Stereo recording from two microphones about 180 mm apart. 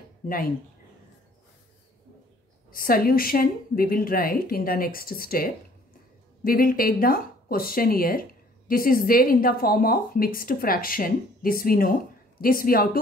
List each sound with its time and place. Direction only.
2.7 s speech: 55° left (ahead or behind)